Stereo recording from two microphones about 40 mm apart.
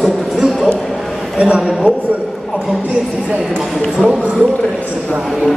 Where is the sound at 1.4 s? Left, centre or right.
Right.